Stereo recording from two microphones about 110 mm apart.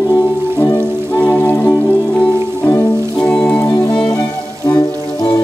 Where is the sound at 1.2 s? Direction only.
15° left (ahead or behind).